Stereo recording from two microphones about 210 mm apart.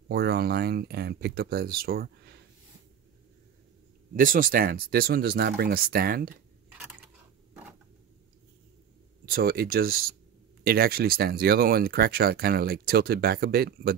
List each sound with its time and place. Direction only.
0.1 s speech: 50° right (ahead or behind)
4.1 s speech: 40° right (ahead or behind)
9.2 s speech: 45° right (ahead or behind)